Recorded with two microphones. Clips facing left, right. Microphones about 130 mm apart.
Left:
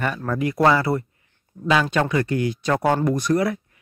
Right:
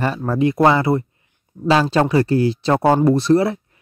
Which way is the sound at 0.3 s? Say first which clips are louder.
Right 4 dB; 25° right (ahead or behind).